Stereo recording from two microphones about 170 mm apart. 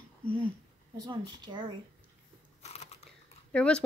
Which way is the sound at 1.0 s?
25° right (ahead or behind).